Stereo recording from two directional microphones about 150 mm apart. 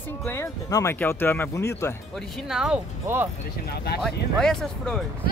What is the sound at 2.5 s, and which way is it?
Speech, 5° right (ahead or behind).